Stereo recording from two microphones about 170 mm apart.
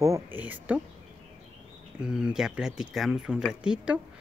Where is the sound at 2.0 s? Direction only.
5° right (ahead or behind).